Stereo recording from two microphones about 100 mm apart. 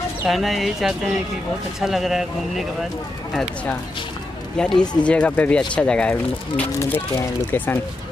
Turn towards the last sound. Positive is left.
turn(degrees=25)  # may be behind; listen again after turning